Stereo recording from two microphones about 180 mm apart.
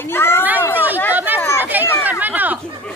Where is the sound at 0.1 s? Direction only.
15° left (ahead or behind).